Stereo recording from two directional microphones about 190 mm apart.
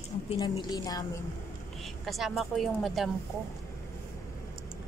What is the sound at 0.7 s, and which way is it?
Speech, 20° left (ahead or behind).